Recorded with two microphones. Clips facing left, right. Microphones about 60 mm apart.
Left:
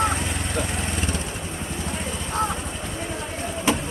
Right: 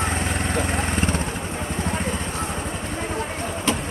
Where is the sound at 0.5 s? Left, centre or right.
Right.